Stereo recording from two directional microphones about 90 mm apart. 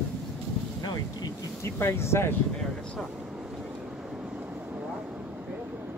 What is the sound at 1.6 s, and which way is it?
Speech, 30° left (ahead or behind).